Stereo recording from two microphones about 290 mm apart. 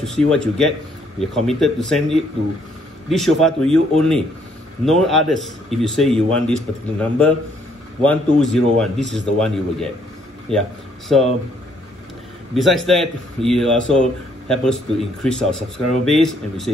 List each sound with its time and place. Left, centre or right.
0.0 s speech: centre
12.5 s speech: centre